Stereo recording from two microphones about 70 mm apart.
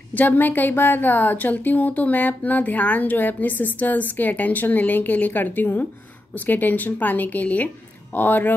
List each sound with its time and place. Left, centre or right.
0.1 s a woman's voice: left